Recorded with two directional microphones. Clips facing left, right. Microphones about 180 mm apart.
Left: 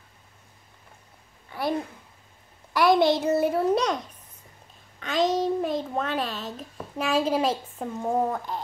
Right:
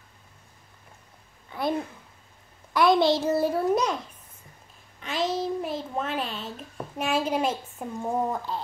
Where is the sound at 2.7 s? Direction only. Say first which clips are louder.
Left 1 dB; 15° left (ahead or behind).